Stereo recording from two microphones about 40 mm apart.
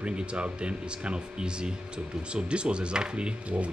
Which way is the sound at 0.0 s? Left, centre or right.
Right.